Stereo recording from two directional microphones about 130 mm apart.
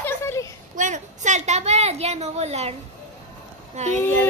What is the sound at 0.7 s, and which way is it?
A woman's voice, 70° right (ahead or behind).